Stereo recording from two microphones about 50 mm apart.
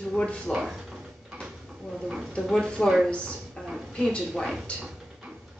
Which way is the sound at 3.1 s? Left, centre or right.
Left.